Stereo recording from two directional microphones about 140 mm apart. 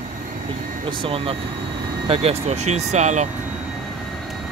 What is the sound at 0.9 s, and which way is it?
Speech, 40° right (ahead or behind).